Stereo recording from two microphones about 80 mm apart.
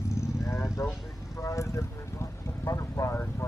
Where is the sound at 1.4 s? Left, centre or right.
Left.